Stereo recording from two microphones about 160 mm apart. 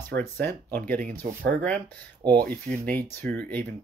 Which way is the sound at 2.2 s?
25° right (ahead or behind).